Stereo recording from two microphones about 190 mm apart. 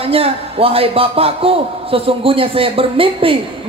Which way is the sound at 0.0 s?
30° right (ahead or behind).